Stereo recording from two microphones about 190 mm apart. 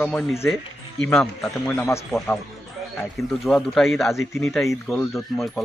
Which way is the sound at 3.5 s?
Centre (ahead or behind).